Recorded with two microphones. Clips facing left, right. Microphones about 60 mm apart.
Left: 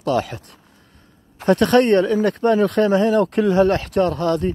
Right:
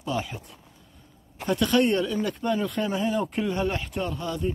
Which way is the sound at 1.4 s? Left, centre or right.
Left.